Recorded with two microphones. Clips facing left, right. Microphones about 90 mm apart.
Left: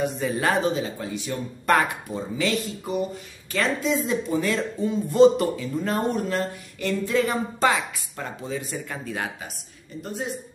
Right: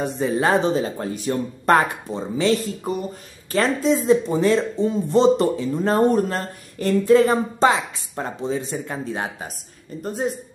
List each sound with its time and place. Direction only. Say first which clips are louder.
0.0 s speech: right 3 dB; 30° right (ahead or behind)